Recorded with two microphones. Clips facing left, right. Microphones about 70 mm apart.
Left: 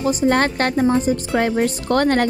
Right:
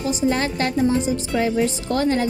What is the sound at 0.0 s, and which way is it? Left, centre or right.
A woman's voice, left.